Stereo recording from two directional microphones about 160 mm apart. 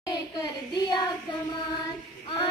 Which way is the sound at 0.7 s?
25° left (ahead or behind).